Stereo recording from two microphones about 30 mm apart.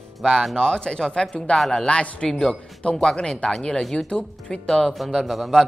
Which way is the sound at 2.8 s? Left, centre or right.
Left.